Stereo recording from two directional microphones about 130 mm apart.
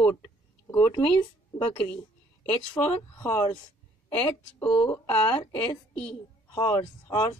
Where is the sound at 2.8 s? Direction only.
35° left (ahead or behind).